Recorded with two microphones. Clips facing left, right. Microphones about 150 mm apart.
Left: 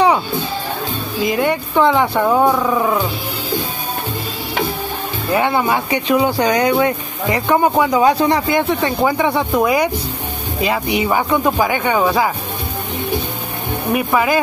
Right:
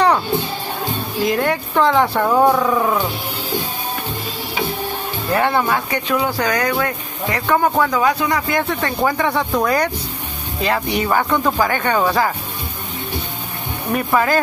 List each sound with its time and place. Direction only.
1.2 s speech: centre (ahead or behind)
5.3 s speech: 10° left (ahead or behind)
8.0 s speech: 25° left (ahead or behind); by 12.3 s 10° left (ahead or behind)
13.9 s speech: 10° left (ahead or behind)